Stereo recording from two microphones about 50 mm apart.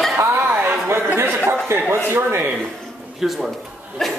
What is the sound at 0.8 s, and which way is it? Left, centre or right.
Chatter, right.